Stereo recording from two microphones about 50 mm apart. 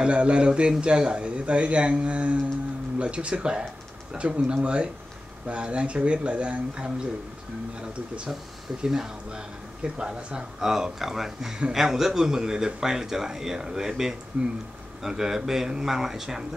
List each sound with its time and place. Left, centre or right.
0.0 s a man's voice: right
8.8 s a man's voice: centre
10.6 s speech: centre
14.3 s a man's voice: right
15.0 s speech: centre